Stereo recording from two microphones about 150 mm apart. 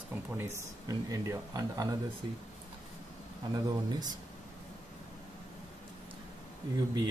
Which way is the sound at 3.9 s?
25° right (ahead or behind).